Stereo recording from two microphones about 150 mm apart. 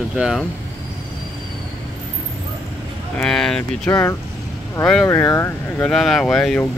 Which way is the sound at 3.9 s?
20° left (ahead or behind).